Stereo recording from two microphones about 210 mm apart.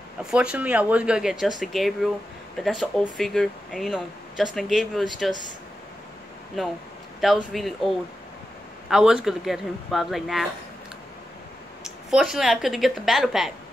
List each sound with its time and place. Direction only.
0.2 s speech: 5° right (ahead or behind)
6.6 s speech: centre (ahead or behind)
8.8 s speech: centre (ahead or behind)
11.8 s speech: centre (ahead or behind)